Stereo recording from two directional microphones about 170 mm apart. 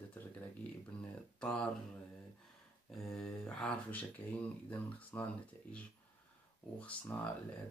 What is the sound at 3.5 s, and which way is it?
Speech, 5° left (ahead or behind).